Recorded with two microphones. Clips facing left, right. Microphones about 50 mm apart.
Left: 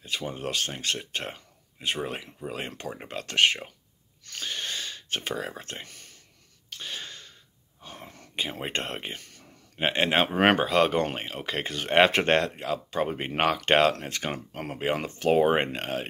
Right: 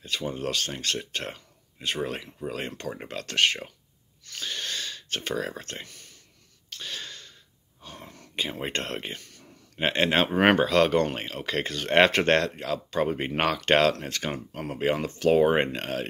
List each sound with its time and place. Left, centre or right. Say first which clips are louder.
0.0 s speech: right 2 dB; centre
1.1 s a sound: even; left
2.5 s speech: even; centre
6.7 s a sound: even; centre
7.8 s whispering: even; left
8.4 s speech: right 1 dB; centre